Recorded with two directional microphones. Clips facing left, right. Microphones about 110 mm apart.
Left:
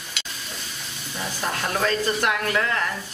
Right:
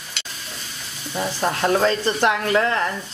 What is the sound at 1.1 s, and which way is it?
Speech, 30° right (ahead or behind).